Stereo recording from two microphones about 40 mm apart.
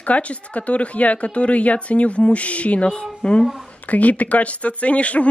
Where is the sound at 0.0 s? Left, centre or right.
Left.